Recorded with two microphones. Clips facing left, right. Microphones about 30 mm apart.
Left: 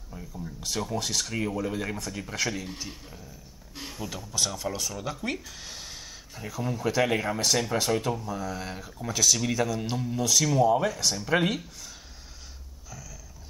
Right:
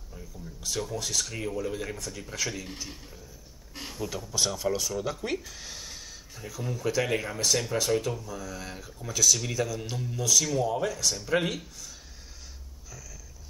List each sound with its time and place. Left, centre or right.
0.1 s speech: centre
3.9 s speech: centre